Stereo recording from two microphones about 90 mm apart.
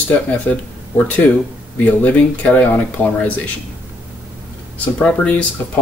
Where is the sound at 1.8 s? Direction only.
15° left (ahead or behind).